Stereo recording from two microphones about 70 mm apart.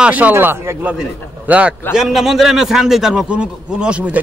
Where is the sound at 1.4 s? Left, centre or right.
Centre.